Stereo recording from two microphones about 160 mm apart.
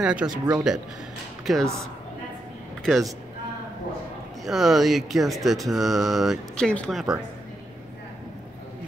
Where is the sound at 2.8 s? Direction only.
Centre (ahead or behind).